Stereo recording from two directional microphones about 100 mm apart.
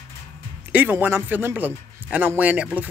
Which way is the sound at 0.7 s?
15° right (ahead or behind).